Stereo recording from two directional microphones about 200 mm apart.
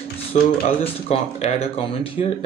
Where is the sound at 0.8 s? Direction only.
30° left (ahead or behind).